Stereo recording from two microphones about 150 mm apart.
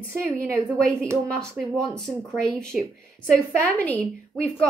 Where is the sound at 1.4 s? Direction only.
5° left (ahead or behind).